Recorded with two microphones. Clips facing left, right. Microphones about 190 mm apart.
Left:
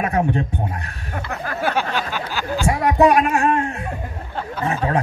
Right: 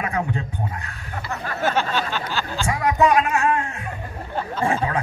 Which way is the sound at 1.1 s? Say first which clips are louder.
Left 2 dB; 55° left (ahead or behind).